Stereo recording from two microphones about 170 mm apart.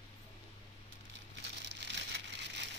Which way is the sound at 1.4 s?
90° right.